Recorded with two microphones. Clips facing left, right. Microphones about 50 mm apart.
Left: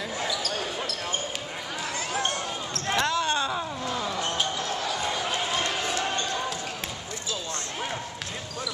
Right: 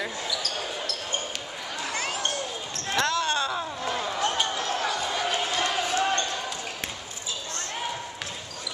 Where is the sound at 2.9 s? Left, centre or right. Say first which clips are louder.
Even; centre.